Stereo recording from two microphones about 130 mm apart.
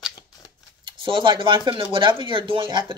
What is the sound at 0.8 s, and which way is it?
Speech, 40° right (ahead or behind).